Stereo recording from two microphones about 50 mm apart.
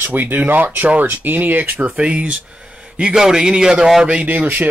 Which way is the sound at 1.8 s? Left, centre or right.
Centre.